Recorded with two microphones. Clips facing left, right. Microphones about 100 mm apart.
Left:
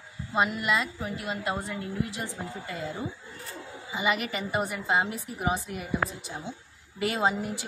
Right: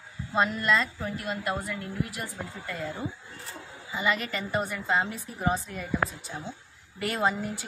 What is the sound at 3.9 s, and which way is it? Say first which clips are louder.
A woman's voice: even; 20° left (ahead or behind).